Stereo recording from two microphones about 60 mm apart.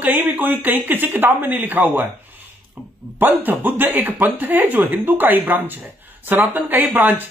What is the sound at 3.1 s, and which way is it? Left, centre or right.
A woman's voice, right.